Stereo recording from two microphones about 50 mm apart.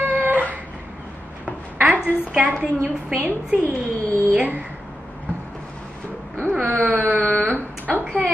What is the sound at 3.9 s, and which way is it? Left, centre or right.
Speech, left.